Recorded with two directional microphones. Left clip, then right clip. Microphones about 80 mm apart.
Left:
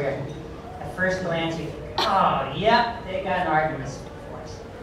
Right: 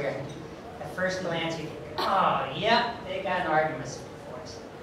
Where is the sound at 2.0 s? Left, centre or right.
Left.